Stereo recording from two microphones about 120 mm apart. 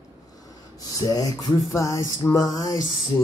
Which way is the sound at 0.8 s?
30° left (ahead or behind).